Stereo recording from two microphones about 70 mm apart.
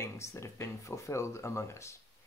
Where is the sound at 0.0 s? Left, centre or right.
Left.